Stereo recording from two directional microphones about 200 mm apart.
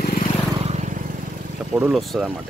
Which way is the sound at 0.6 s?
35° right (ahead or behind).